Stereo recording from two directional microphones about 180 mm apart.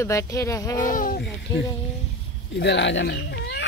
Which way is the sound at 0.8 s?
50° left (ahead or behind).